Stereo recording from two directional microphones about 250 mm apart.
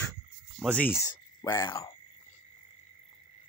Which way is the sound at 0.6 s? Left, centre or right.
Centre.